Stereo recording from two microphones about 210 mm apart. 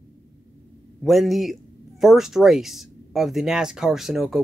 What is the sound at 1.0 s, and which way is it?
Speech, centre (ahead or behind).